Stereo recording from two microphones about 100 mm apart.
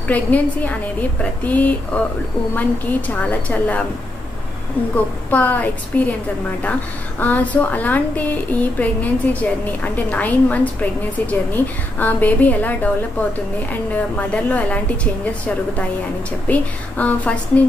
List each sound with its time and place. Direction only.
0.1 s a woman's voice: 15° left (ahead or behind)
4.9 s a woman's voice: 15° left (ahead or behind)
7.2 s a woman's voice: 15° left (ahead or behind)
14.1 s a woman's voice: 15° left (ahead or behind)
16.4 s a woman's voice: 15° left (ahead or behind)